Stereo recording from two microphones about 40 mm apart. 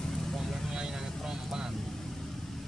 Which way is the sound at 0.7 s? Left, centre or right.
Centre.